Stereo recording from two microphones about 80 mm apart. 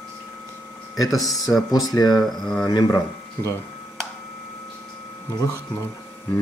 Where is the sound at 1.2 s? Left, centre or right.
Left.